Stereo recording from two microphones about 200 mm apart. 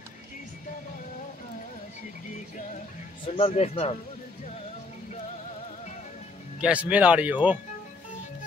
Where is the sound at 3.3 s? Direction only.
30° left (ahead or behind).